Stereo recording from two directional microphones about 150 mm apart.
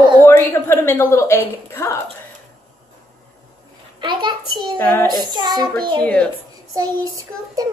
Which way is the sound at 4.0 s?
30° right (ahead or behind).